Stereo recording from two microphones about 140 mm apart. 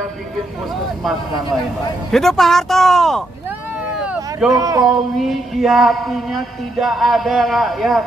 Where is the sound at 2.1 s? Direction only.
Centre (ahead or behind).